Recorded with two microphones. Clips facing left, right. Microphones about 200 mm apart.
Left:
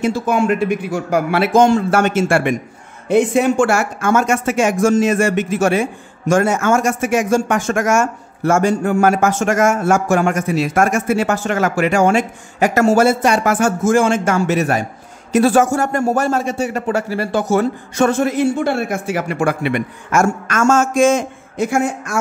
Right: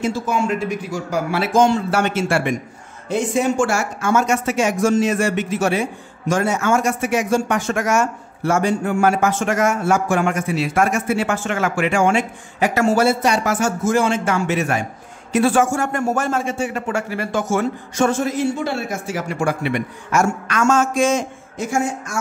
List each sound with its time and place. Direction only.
0.0 s a man's voice: 60° left (ahead or behind); by 17.6 s 35° left (ahead or behind)
17.9 s a man's voice: 60° left (ahead or behind)